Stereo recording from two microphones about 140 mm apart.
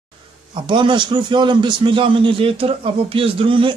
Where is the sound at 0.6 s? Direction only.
35° right (ahead or behind).